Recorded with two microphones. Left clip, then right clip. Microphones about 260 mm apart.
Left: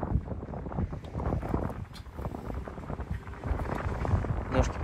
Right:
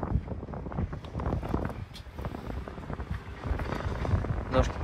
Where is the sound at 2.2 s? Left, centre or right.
Left.